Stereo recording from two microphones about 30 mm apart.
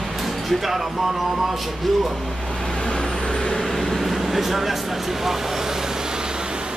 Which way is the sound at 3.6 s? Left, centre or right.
Centre.